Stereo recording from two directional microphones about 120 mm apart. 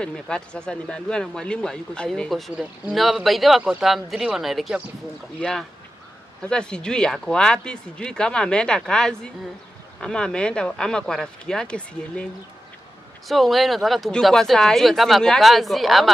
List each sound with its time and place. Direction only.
0.0 s speech: 5° left (ahead or behind)
13.3 s speech: centre (ahead or behind)